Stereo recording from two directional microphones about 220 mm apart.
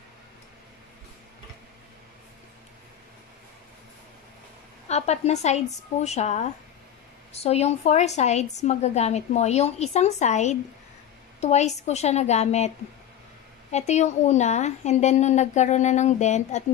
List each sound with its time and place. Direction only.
4.8 s a woman's voice: 30° left (ahead or behind)